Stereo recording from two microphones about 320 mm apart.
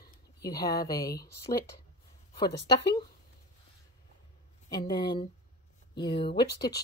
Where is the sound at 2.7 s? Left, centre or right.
Centre.